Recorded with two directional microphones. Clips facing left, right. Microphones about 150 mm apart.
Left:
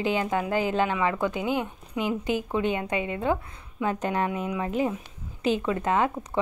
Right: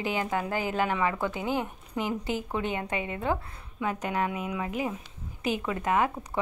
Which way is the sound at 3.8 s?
30° left (ahead or behind).